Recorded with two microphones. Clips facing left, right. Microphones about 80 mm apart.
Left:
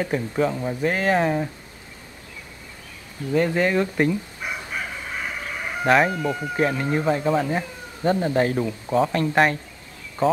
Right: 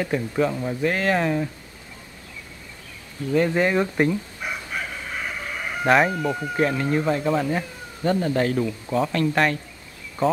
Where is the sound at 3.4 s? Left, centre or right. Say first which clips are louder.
Even; centre.